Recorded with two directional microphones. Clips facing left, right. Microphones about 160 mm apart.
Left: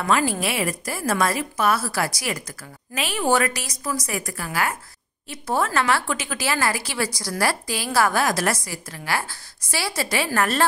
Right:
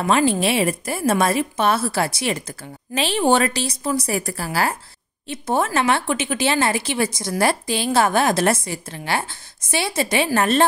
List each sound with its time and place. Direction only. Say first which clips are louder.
0.0 s speech: right 4 dB; 25° right (ahead or behind)
5.3 s speech: right 2 dB; 20° right (ahead or behind)